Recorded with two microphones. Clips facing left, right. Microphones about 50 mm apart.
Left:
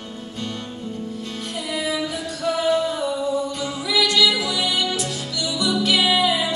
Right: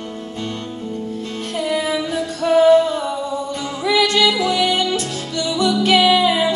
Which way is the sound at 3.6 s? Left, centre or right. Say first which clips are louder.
Right 8 dB; right.